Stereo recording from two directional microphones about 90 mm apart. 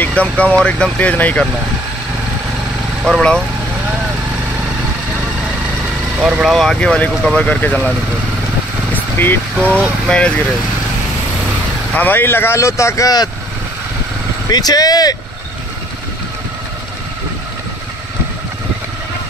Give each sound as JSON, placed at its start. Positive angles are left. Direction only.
{"t": 0.0, "sound": "speech", "side_deg": 15}
{"t": 3.1, "sound": "speech", "side_deg": 5}
{"t": 6.1, "sound": "speech", "side_deg": -15}
{"t": 6.4, "sound": "speech", "side_deg": 5}
{"t": 8.9, "sound": "vehicle", "side_deg": 25}
{"t": 10.0, "sound": "speech", "side_deg": 10}
{"t": 11.9, "sound": "speech", "side_deg": 20}
{"t": 14.5, "sound": "speech", "side_deg": 45}